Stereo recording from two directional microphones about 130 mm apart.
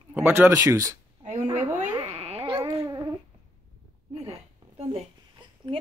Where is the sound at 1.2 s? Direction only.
65° right (ahead or behind).